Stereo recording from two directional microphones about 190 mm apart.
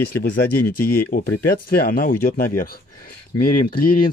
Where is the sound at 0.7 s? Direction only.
50° left (ahead or behind).